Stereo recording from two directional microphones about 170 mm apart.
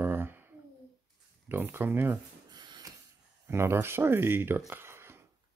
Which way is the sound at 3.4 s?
15° right (ahead or behind).